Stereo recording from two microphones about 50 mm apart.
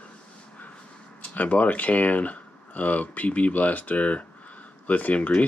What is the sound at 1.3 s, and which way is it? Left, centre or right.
Speech, left.